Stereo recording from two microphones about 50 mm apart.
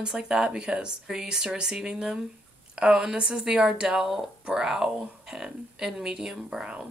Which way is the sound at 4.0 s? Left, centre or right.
Centre.